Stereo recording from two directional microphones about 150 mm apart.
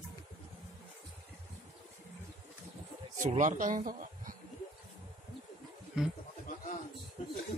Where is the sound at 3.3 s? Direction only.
55° right (ahead or behind).